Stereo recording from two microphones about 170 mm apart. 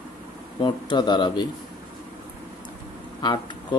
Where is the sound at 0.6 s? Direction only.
25° left (ahead or behind).